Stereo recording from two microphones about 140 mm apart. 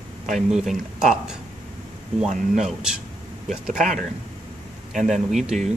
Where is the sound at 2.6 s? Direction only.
5° right (ahead or behind).